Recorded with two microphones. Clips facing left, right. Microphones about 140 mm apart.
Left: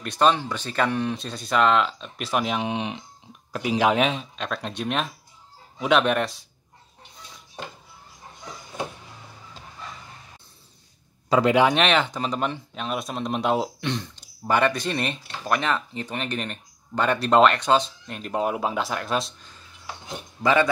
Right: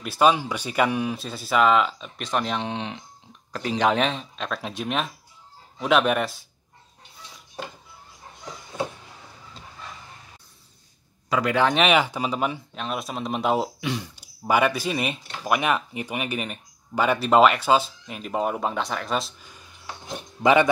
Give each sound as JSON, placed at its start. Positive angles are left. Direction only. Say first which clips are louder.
{"t": 0.0, "sound": "speech", "louder": "right 1 dB", "side_deg": -5}
{"t": 11.2, "sound": "speech", "louder": "left 4 dB", "side_deg": 30}
{"t": 11.7, "sound": "speech", "louder": "right 1 dB", "side_deg": -5}
{"t": 20.4, "sound": "speech", "louder": "right 3 dB", "side_deg": -20}